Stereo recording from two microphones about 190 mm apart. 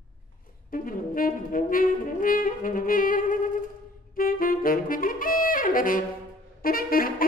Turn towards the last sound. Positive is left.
turn(degrees=50)  # may be behind; listen again after turning